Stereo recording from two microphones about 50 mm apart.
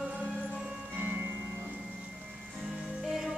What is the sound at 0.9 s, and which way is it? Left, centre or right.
Music, right.